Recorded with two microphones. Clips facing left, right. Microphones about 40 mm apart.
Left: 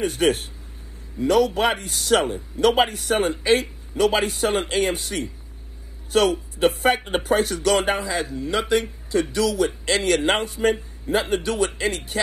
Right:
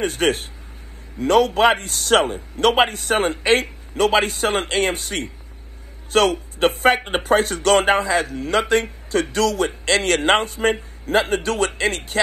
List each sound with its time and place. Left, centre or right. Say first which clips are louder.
0.0 s a man's voice: right 1 dB; right
8.3 s a man's voice: right 3 dB; right